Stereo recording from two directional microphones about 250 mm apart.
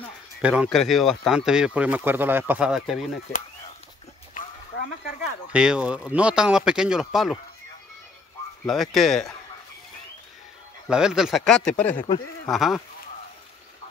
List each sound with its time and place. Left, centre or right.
0.4 s speech: centre
4.4 s a sound: left
5.5 s speech: centre
8.6 s speech: centre
10.9 s speech: centre